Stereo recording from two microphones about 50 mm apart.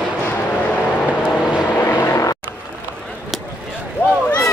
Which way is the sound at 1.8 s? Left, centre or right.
Left.